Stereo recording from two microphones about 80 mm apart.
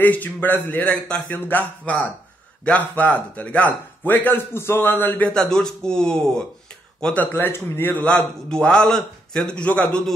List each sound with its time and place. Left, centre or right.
0.0 s speech: left
5.3 s a man's voice: centre
7.2 s a man's voice: left